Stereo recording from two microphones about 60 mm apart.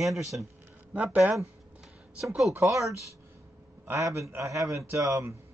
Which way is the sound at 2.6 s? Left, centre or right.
Right.